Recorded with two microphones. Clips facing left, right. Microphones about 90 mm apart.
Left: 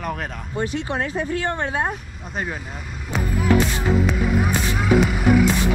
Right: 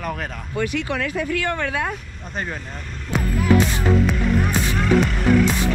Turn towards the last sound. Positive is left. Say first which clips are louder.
# left 1 dB
turn(degrees=10)  # may be behind; listen again after turning